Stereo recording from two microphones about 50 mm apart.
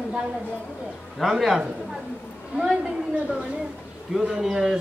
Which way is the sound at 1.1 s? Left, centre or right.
Centre.